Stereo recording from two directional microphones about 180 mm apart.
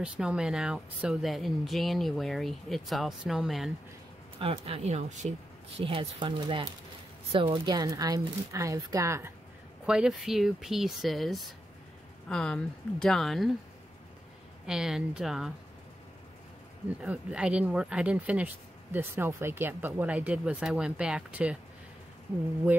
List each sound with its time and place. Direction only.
0.0 s speech: 5° right (ahead or behind)
4.4 s speech: 30° right (ahead or behind); by 9.3 s 15° right (ahead or behind)
9.8 s speech: 5° right (ahead or behind)
14.7 s speech: 5° right (ahead or behind)
17.0 s speech: 5° right (ahead or behind)